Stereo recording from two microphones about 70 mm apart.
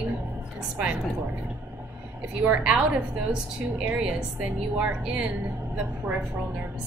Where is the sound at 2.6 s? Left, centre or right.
Centre.